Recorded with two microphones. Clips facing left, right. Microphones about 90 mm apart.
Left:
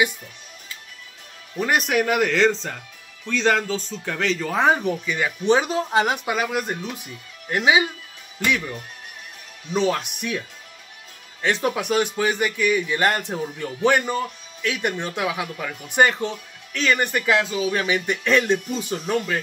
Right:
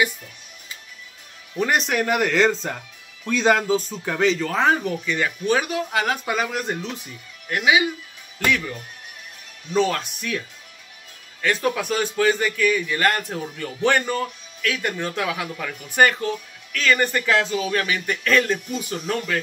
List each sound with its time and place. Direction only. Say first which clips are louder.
1.6 s a man's voice: left 1 dB; 5° left (ahead or behind)
4.4 s speech: even; 10° left (ahead or behind)
5.4 s speech: left 5 dB; 25° left (ahead or behind)
6.2 s speech: even; 5° left (ahead or behind)
7.4 s speech: left 1 dB; 25° left (ahead or behind)
8.5 s speech: right 1 dB; 15° left (ahead or behind)
11.4 s speech: even; 20° left (ahead or behind)